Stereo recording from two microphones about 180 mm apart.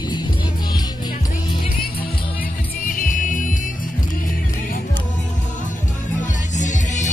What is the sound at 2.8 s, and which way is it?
Music, 50° left (ahead or behind).